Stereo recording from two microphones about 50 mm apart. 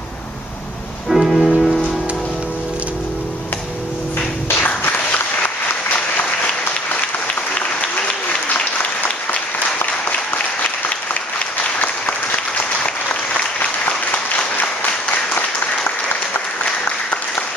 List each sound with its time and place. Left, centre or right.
1.1 s music: centre
4.6 s applause: left
8.5 s applause: left
9.8 s applause: left
11.8 s applause: left
16.1 s applause: left